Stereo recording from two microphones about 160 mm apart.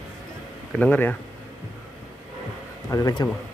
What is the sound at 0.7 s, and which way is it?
Speech, 10° left (ahead or behind).